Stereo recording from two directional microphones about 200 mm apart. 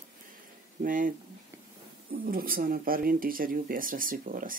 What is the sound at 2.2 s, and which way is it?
Speech, 45° right (ahead or behind).